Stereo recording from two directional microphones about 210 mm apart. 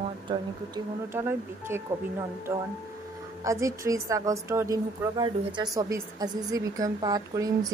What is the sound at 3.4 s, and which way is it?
A woman's voice, 15° right (ahead or behind).